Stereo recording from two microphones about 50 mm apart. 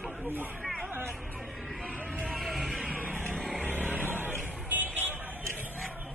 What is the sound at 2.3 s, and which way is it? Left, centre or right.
Vehicle, centre.